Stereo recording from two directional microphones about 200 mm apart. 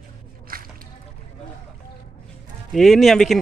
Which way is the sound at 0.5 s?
45° right (ahead or behind).